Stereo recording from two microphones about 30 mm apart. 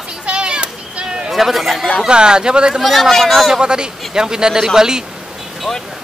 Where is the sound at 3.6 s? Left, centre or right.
Right.